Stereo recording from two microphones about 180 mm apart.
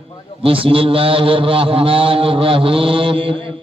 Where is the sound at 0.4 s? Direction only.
30° right (ahead or behind).